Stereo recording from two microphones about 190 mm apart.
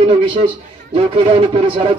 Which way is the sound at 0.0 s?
25° right (ahead or behind).